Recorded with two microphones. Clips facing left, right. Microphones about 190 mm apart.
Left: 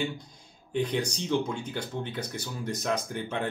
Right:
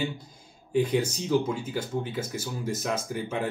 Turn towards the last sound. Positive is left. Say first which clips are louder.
# right 2 dB
turn(degrees=-5)  # may be behind; listen again after turning